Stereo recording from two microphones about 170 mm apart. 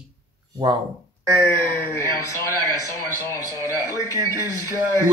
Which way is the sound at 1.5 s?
15° left (ahead or behind).